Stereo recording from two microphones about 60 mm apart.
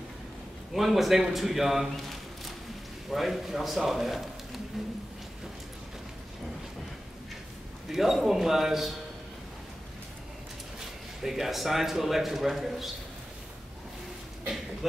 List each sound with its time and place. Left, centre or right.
0.7 s a man's voice: centre
3.1 s a man's voice: centre
7.9 s a man's voice: centre
11.2 s a man's voice: centre